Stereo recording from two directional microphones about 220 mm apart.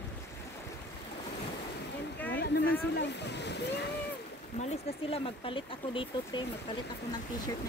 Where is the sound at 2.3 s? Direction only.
50° left (ahead or behind).